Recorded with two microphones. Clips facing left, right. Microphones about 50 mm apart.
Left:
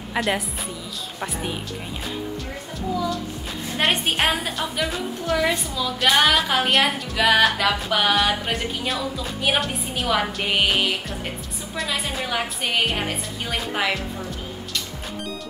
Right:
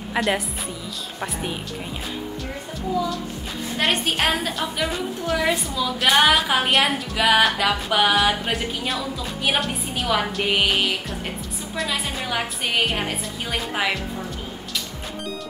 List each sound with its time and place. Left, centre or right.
0.1 s a woman's voice: centre
3.8 s a woman's voice: centre